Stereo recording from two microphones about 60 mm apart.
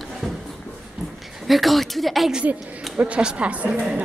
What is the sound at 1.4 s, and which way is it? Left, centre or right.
Speech, centre.